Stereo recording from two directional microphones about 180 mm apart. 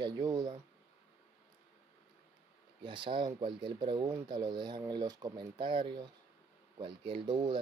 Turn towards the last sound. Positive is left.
turn(degrees=-25)  # may be behind; listen again after turning